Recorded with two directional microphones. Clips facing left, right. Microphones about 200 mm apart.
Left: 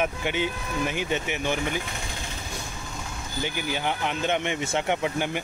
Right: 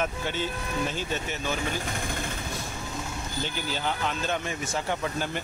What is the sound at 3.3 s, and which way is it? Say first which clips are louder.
Speech: left 4 dB; 15° left (ahead or behind).